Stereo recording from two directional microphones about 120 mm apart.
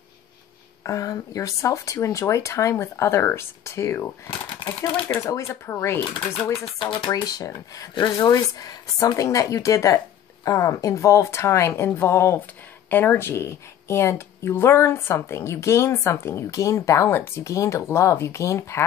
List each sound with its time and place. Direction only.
0.8 s speech: 30° left (ahead or behind)
6.8 s speech: 40° left (ahead or behind)
7.9 s speech: 40° left (ahead or behind)
8.3 s speech: 30° left (ahead or behind)